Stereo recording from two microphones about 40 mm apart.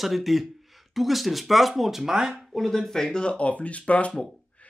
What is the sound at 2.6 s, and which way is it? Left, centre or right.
Speech, centre.